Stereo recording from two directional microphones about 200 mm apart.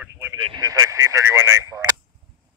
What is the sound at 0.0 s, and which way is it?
Radio, 10° right (ahead or behind).